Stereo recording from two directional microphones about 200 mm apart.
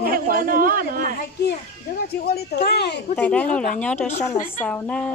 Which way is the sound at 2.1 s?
50° left (ahead or behind).